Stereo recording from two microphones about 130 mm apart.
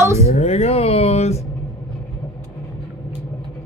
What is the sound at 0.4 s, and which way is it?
Speech, 55° left (ahead or behind).